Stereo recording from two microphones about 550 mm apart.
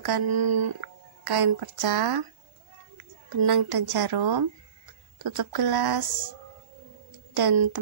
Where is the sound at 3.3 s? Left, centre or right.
Right.